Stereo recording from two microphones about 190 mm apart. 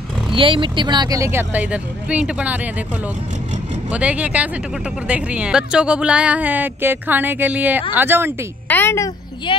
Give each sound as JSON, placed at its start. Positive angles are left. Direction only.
{"t": 0.3, "sound": "speech", "side_deg": -25}
{"t": 3.9, "sound": "speech", "side_deg": -5}
{"t": 8.6, "sound": "speech", "side_deg": 10}
{"t": 9.5, "sound": "a woman's voice", "side_deg": 25}